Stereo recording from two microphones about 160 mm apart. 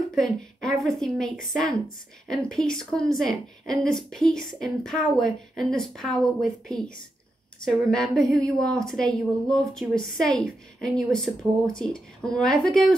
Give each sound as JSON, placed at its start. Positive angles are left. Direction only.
{"t": 0.1, "sound": "a woman's voice", "side_deg": 0}